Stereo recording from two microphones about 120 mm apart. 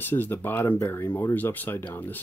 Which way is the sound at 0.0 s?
15° left (ahead or behind).